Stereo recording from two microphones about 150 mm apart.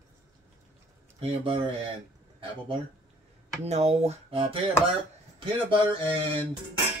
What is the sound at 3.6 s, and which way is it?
Speech, 45° right (ahead or behind).